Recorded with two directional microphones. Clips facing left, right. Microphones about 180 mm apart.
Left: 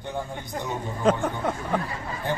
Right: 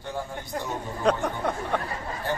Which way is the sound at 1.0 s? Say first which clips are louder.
Left 1 dB; centre (ahead or behind).